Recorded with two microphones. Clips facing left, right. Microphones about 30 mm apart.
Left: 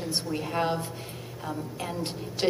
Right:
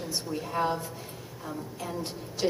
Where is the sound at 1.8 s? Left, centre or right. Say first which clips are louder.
Left 1 dB; left.